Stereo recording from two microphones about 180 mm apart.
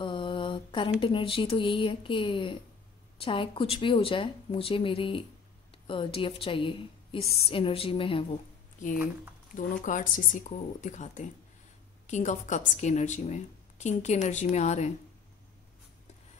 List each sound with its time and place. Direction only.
0.0 s a woman's voice: 25° left (ahead or behind)
8.9 s speech: 10° right (ahead or behind)
9.6 s a woman's voice: 45° left (ahead or behind)